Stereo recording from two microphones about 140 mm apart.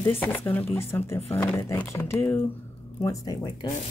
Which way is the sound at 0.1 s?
15° left (ahead or behind).